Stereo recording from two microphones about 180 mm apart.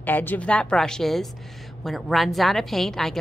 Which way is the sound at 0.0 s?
10° left (ahead or behind).